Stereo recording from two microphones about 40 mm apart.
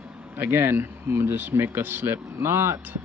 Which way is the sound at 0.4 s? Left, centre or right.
Right.